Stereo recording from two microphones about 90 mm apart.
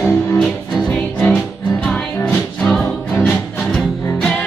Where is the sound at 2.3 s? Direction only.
5° left (ahead or behind).